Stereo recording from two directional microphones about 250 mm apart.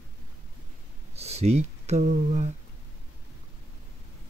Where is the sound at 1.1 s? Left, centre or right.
Right.